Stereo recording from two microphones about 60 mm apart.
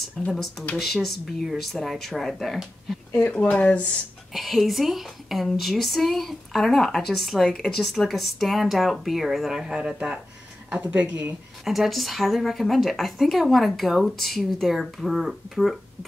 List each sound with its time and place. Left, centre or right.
0.3 s a woman's voice: centre
3.1 s speech: left
4.3 s a woman's voice: centre
11.6 s a woman's voice: centre